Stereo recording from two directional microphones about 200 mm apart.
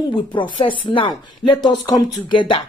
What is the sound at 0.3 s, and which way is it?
Speech, 25° left (ahead or behind).